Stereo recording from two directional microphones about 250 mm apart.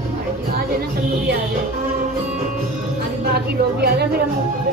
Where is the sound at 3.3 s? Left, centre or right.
Right.